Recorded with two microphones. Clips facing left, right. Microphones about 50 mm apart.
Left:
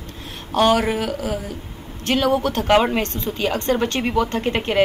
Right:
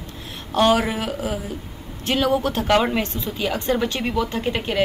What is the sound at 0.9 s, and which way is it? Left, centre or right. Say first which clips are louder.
Speech: left 2 dB; right.